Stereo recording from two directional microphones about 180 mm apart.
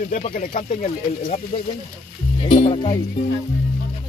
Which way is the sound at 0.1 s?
45° left (ahead or behind).